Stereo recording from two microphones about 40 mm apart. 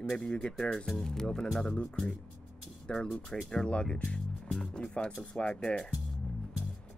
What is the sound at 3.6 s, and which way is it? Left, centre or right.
Speech, left.